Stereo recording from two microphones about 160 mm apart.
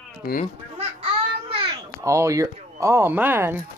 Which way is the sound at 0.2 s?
65° left (ahead or behind).